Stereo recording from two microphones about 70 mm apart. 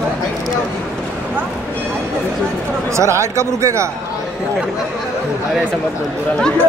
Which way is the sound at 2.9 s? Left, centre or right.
Right.